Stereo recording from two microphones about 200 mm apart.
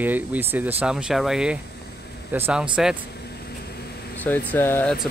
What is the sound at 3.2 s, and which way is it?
Vehicle, 55° left (ahead or behind).